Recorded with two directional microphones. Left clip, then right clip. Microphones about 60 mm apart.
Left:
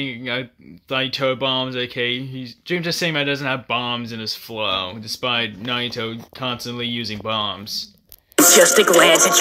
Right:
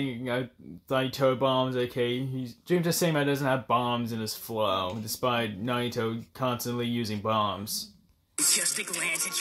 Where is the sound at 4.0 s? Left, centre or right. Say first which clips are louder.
Left 7 dB; right.